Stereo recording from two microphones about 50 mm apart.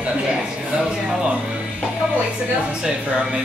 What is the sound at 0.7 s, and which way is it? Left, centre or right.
Speech, centre.